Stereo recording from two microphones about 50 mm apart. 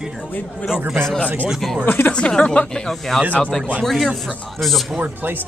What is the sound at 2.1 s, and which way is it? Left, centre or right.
Speech, left.